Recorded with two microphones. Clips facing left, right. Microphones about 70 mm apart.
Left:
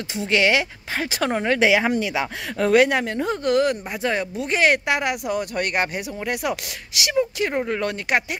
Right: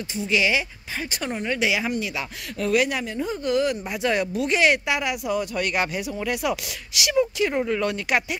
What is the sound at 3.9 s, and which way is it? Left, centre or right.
Speech, left.